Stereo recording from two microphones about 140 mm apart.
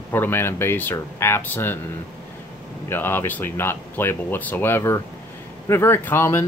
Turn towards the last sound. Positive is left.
turn(degrees=20)  # may be behind; listen again after turning